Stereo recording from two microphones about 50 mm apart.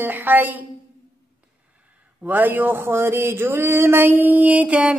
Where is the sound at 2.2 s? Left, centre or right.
Right.